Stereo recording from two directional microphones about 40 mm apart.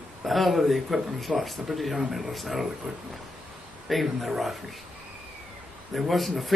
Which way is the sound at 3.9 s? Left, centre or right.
Centre.